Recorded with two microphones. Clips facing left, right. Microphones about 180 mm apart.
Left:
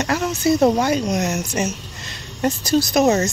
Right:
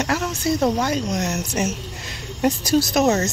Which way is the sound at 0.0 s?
Centre (ahead or behind).